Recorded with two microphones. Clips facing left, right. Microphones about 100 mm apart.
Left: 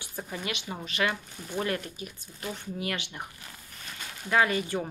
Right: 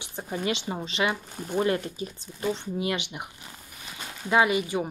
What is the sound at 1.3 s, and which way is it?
Speech, 45° right (ahead or behind).